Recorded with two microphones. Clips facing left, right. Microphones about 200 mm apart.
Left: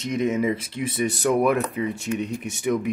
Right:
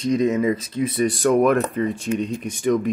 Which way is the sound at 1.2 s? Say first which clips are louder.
Right 3 dB; 10° left (ahead or behind).